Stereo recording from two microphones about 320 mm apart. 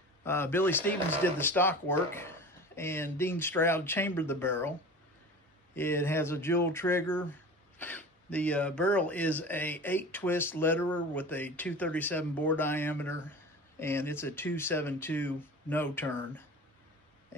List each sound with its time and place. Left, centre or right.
0.2 s speech: centre
5.8 s speech: centre